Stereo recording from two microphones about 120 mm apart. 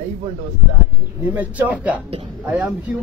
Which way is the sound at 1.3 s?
15° right (ahead or behind).